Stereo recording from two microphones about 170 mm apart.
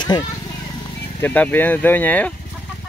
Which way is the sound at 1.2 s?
10° left (ahead or behind).